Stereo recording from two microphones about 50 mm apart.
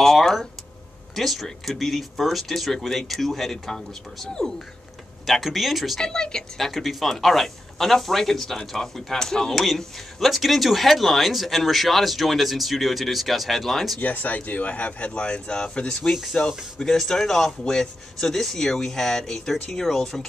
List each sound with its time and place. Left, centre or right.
0.0 s a sound: centre
1.1 s speech: centre
5.9 s speech: centre
6.7 s speech: centre
14.0 s speech: left
16.3 s speech: centre